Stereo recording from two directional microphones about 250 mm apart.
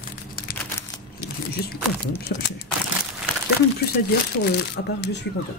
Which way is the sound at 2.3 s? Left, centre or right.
Left.